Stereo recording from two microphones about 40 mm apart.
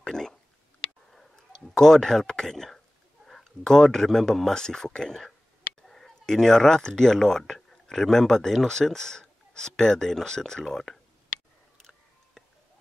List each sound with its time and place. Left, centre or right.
0.0 s speech: centre
1.5 s speech: centre
4.6 s speech: centre